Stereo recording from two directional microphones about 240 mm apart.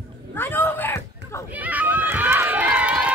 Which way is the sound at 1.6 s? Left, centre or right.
Centre.